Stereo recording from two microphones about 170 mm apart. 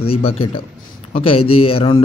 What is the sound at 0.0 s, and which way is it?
Speech, 35° left (ahead or behind).